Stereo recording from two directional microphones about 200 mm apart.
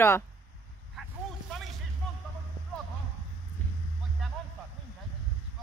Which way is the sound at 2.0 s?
Centre (ahead or behind).